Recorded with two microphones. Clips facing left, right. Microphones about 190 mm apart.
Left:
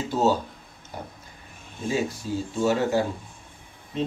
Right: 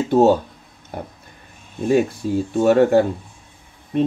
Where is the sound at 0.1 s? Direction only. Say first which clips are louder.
Right 9 dB; 55° right (ahead or behind).